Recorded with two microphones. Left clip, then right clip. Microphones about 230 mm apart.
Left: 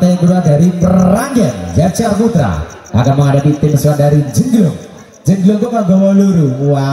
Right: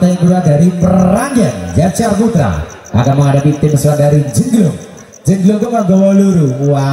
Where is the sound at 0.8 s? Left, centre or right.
Centre.